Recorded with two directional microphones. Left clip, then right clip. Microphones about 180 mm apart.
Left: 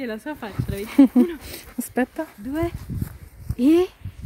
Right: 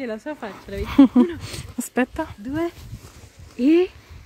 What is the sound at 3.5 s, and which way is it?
Speech, 75° left (ahead or behind).